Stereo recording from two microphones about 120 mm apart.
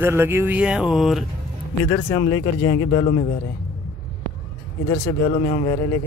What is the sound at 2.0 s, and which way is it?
Speech, 50° left (ahead or behind).